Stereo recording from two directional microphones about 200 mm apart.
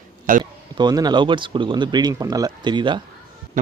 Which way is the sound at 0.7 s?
20° right (ahead or behind).